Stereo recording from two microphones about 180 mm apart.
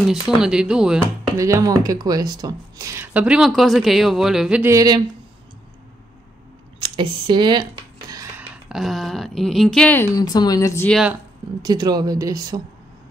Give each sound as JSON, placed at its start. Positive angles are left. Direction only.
{"t": 0.4, "sound": "speech", "side_deg": -5}
{"t": 1.3, "sound": "speech", "side_deg": -15}
{"t": 4.7, "sound": "speech", "side_deg": -20}
{"t": 6.8, "sound": "speech", "side_deg": -25}
{"t": 8.1, "sound": "a sound", "side_deg": -20}
{"t": 8.6, "sound": "speech", "side_deg": 0}
{"t": 10.1, "sound": "speech", "side_deg": 20}
{"t": 10.9, "sound": "speech", "side_deg": -5}
{"t": 11.6, "sound": "speech", "side_deg": -25}